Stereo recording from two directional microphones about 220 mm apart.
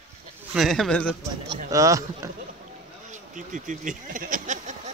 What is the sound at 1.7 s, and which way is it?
Speech, 15° right (ahead or behind).